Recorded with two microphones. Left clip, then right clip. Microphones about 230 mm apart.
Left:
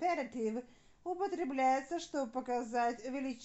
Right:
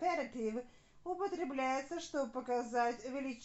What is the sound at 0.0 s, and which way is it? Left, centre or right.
Speech, left.